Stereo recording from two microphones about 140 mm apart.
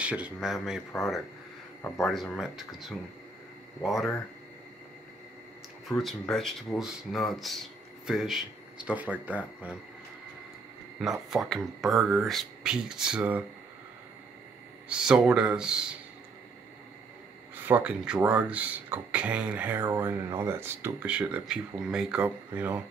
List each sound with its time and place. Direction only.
0.0 s speech: 10° right (ahead or behind)
2.0 s speech: centre (ahead or behind)
5.9 s speech: centre (ahead or behind)
11.0 s speech: centre (ahead or behind)
14.9 s speech: 5° right (ahead or behind)
17.6 s speech: 10° right (ahead or behind)